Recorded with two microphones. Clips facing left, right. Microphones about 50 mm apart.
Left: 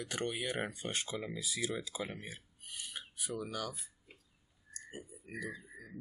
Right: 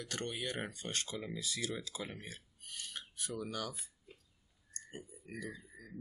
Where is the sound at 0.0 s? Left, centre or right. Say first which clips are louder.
Left 3 dB; centre.